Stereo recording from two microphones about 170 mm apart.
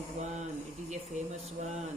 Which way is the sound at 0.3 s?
45° right (ahead or behind).